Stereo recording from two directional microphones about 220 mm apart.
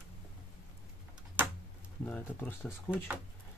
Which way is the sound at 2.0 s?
10° left (ahead or behind).